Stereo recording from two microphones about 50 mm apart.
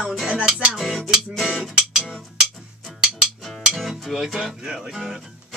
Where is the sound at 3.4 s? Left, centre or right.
Centre.